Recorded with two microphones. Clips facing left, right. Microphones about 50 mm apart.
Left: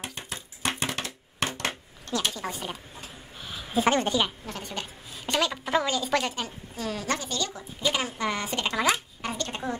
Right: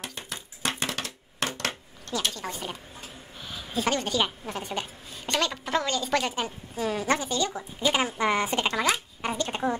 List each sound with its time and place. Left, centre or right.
0.3 s a sound: left
2.3 s a woman's voice: centre
3.3 s a sound: centre
3.7 s a woman's voice: left
4.5 s a woman's voice: centre
5.1 s a woman's voice: centre
6.3 s a woman's voice: centre
8.7 s a woman's voice: centre
9.2 s speech: centre